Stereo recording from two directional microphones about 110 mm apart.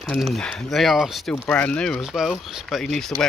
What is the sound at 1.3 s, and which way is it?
Speech, 10° left (ahead or behind).